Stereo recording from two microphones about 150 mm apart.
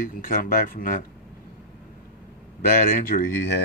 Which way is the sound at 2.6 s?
60° left (ahead or behind).